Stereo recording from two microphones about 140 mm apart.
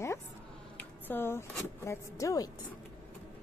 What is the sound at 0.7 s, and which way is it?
A woman's voice, 15° left (ahead or behind).